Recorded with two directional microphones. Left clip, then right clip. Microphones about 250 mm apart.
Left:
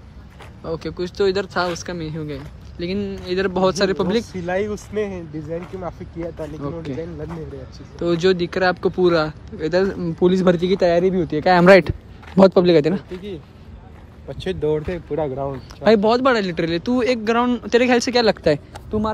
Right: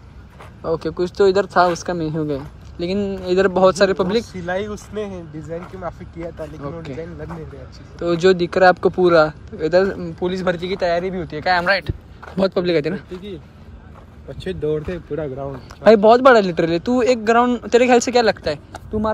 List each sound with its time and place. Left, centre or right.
0.6 s speech: centre
4.3 s speech: left
4.6 s speech: left
5.8 s speech: centre
10.1 s speech: left
13.1 s speech: centre
14.5 s speech: centre